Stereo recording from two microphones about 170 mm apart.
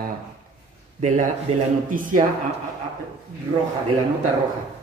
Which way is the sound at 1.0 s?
50° right (ahead or behind).